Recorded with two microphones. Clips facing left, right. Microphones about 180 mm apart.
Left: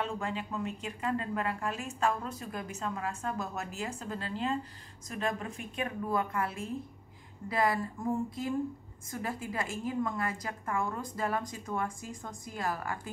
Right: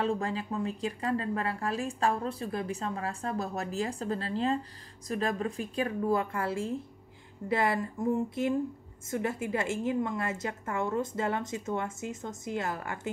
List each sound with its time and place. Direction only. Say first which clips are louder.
0.0 s a woman's voice: right 5 dB; 35° right (ahead or behind)
9.1 s a woman's voice: right 5 dB; 25° right (ahead or behind)